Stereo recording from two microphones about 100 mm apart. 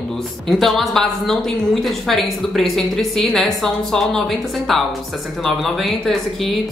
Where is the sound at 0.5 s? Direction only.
Centre (ahead or behind).